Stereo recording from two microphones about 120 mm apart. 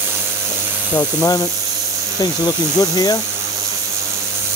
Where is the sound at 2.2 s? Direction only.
30° left (ahead or behind).